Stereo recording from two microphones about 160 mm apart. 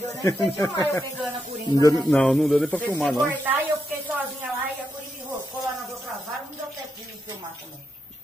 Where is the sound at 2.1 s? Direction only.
Centre (ahead or behind).